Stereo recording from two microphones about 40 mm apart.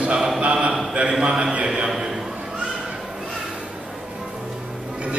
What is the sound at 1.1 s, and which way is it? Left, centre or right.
Speech, centre.